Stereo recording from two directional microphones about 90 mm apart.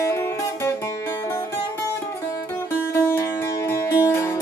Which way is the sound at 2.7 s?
25° left (ahead or behind).